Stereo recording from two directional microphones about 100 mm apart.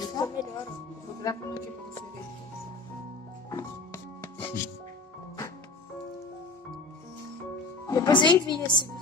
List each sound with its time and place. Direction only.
0.0 s music: 40° left (ahead or behind)
3.4 s music: 30° left (ahead or behind)
7.9 s a woman's voice: 45° left (ahead or behind)